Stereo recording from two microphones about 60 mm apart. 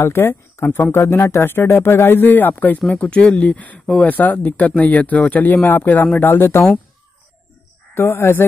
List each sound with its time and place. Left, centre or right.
0.0 s speech: left
2.9 s speech: centre; by 6.6 s left
7.9 s speech: left